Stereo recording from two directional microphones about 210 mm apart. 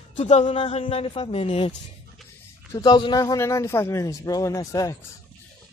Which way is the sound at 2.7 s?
20° left (ahead or behind).